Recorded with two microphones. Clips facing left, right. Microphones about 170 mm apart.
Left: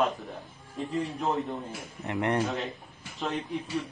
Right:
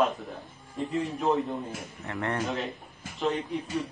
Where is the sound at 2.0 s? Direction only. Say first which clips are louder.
Left 4 dB; 20° left (ahead or behind).